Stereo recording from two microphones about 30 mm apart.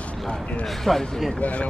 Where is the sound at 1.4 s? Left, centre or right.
Left.